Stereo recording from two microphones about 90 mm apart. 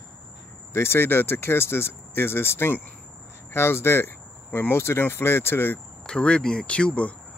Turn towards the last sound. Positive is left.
turn(degrees=15)  # may be behind; listen again after turning